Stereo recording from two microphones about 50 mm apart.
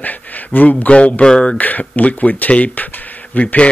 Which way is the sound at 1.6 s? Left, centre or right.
Left.